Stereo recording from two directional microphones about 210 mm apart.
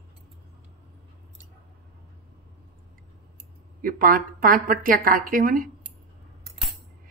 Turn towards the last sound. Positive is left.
turn(degrees=-40)  # may be behind; listen again after turning